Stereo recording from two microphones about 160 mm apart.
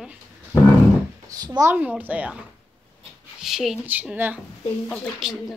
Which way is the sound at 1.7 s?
10° right (ahead or behind).